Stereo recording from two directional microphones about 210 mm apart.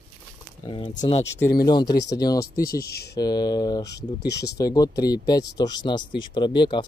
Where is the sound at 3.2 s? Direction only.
20° left (ahead or behind).